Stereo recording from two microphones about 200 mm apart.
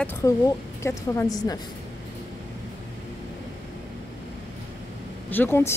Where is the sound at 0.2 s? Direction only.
15° left (ahead or behind).